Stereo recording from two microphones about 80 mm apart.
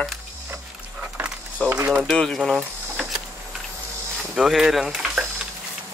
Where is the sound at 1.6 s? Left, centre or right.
Centre.